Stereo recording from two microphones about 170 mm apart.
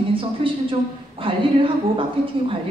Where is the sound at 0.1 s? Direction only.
30° right (ahead or behind).